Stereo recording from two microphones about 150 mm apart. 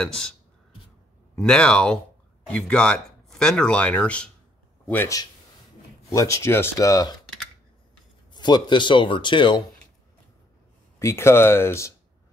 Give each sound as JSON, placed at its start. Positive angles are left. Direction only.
{"t": 0.0, "sound": "speech", "side_deg": 5}
{"t": 1.3, "sound": "speech", "side_deg": 5}
{"t": 6.1, "sound": "speech", "side_deg": 20}
{"t": 8.3, "sound": "speech", "side_deg": 30}
{"t": 11.0, "sound": "speech", "side_deg": 20}